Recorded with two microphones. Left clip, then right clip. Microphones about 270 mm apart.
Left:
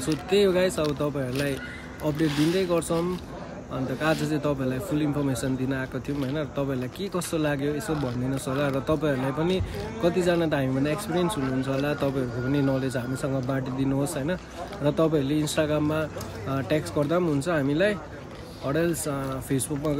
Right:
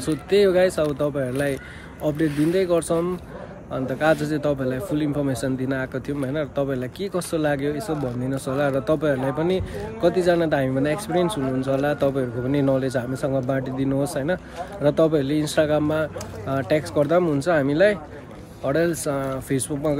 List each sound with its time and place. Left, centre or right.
0.1 s a man's voice: centre